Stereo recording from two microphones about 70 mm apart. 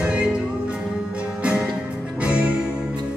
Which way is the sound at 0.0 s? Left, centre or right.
Centre.